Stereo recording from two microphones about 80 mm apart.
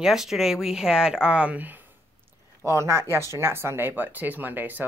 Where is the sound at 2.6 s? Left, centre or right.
Right.